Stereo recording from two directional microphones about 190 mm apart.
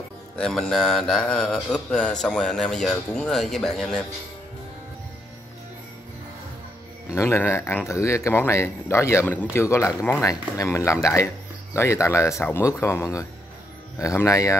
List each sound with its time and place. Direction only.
0.4 s speech: centre (ahead or behind)
7.1 s speech: 15° left (ahead or behind)